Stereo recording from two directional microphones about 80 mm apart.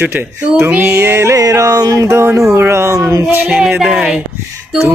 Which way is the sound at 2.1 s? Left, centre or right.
Right.